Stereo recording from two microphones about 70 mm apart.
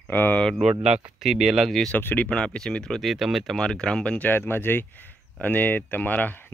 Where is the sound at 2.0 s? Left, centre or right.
Left.